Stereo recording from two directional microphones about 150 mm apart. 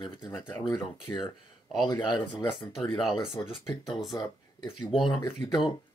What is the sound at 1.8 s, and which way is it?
Speech, 30° left (ahead or behind).